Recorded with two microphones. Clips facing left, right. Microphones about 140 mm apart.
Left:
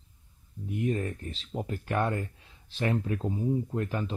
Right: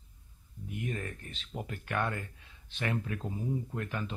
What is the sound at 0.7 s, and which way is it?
Speech, 35° left (ahead or behind).